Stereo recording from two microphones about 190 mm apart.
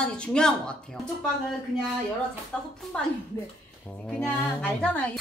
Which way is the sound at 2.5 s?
5° left (ahead or behind).